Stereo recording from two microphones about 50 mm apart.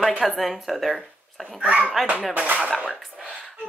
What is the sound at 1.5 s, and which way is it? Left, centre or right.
Speech, right.